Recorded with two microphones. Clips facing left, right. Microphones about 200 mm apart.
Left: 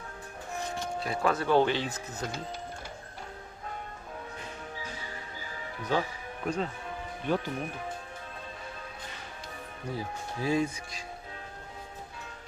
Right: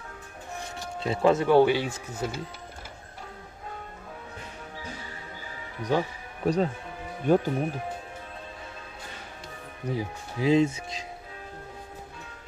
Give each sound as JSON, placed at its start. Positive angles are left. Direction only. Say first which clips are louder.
{"t": 1.0, "sound": "speech", "louder": "right 8 dB", "side_deg": -25}
{"t": 1.5, "sound": "speech", "louder": "right 5 dB", "side_deg": -10}
{"t": 5.8, "sound": "speech", "louder": "right 4 dB", "side_deg": -15}
{"t": 6.4, "sound": "speech", "louder": "right 7 dB", "side_deg": -35}
{"t": 9.8, "sound": "speech", "louder": "right 4 dB", "side_deg": -15}